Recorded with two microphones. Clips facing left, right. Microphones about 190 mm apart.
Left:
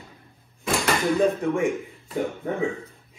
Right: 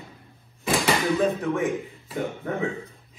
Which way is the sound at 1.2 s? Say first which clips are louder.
Left 2 dB; 15° left (ahead or behind).